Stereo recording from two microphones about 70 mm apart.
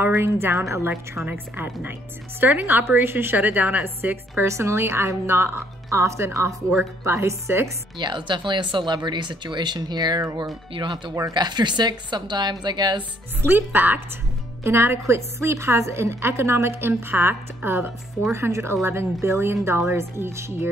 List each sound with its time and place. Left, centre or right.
0.1 s a woman's voice: right
4.5 s a woman's voice: right
8.0 s speech: right
13.4 s a woman's voice: right